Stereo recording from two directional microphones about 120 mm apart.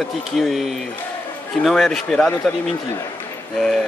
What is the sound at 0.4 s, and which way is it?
A man's voice, centre (ahead or behind).